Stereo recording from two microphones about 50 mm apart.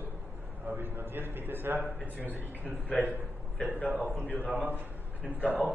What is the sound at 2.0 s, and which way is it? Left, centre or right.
A man's voice, left.